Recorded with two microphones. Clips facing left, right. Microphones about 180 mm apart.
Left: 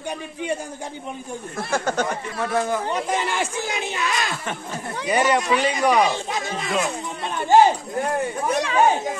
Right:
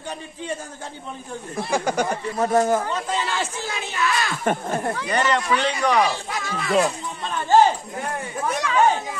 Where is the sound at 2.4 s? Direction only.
40° right (ahead or behind).